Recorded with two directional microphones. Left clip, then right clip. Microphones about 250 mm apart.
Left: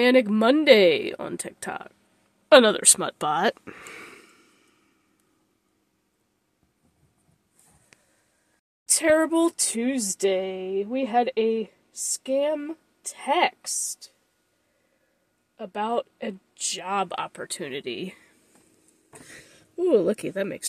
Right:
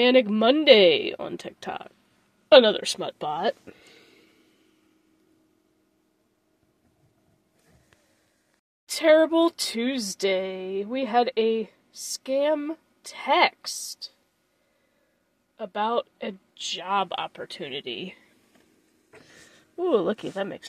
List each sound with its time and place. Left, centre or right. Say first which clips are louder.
0.0 s speech: even; centre; by 4.3 s left
8.8 s a woman's voice: right 2 dB; centre
15.5 s speech: right 1 dB; centre